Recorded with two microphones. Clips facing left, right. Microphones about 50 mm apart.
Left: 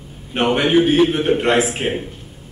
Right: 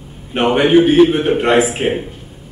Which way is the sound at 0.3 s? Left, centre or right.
Centre.